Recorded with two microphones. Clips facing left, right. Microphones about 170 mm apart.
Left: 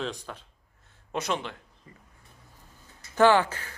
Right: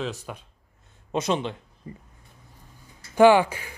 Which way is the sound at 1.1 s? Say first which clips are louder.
Right 5 dB; 20° right (ahead or behind).